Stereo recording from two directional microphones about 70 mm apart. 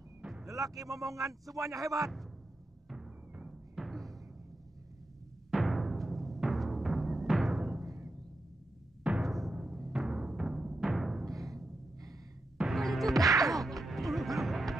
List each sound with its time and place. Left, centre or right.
0.5 s speech: right
3.3 s timpani: centre
5.5 s timpani: centre
9.2 s music: centre
9.6 s timpani: centre
11.2 s timpani: right
12.6 s music: centre
13.1 s music: right
13.6 s music: centre